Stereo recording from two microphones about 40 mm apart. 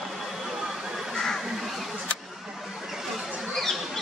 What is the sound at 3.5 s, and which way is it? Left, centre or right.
Squawk, centre.